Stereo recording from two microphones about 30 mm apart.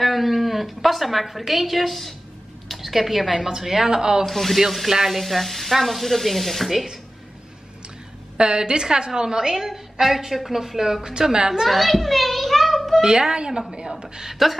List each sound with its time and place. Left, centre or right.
0.0 s a woman's voice: centre; by 4.3 s right
4.3 s speech: centre
4.6 s a woman's voice: centre
5.2 s speech: centre
6.7 s a woman's voice: centre
8.4 s a woman's voice: right
11.6 s a child's voice: centre
13.0 s a woman's voice: right
14.3 s speech: centre